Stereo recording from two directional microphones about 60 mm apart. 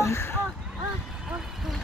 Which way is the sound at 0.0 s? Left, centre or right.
Left.